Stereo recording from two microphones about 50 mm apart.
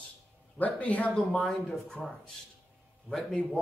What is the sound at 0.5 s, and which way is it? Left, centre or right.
Speech, left.